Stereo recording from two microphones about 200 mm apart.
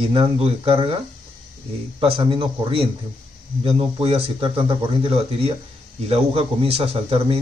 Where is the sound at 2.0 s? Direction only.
25° right (ahead or behind).